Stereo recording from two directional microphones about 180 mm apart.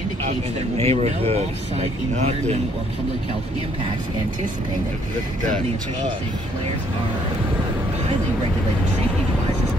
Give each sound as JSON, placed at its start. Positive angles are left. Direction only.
{"t": 0.7, "sound": "speech", "side_deg": -35}